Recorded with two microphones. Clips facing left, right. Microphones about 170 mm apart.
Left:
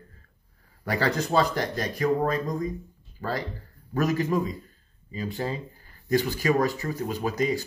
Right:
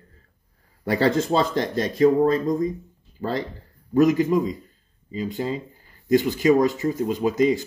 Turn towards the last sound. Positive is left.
turn(degrees=-20)  # may be behind; listen again after turning